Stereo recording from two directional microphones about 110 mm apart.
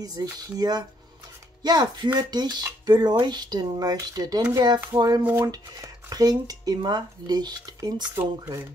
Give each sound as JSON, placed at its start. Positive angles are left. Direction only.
{"t": 0.0, "sound": "speech", "side_deg": -35}